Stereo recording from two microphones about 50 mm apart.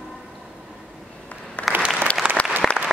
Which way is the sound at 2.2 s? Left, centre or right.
Right.